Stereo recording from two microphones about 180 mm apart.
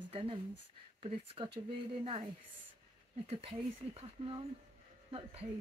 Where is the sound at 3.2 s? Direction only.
35° right (ahead or behind).